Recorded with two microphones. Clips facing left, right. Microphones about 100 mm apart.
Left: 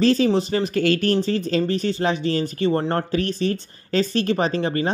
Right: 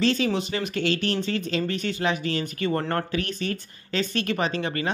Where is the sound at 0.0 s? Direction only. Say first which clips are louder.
Left 6 dB; 40° left (ahead or behind).